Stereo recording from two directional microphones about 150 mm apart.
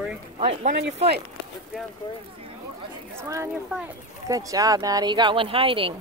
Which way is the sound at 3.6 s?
5° right (ahead or behind).